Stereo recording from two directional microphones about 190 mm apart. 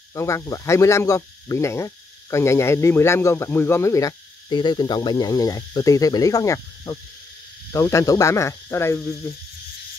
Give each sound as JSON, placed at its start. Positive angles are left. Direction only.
{"t": 0.1, "sound": "speech", "side_deg": 15}